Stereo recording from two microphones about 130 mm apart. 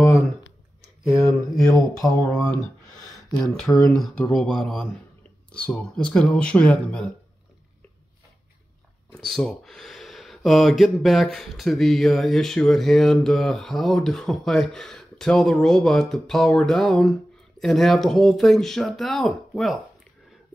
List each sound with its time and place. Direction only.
1.2 s speech: 5° left (ahead or behind)
2.0 s speech: 25° left (ahead or behind)
3.4 s speech: 5° left (ahead or behind)
9.1 s speech: 5° left (ahead or behind)